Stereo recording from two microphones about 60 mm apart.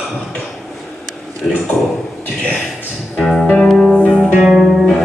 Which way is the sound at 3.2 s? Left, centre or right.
Centre.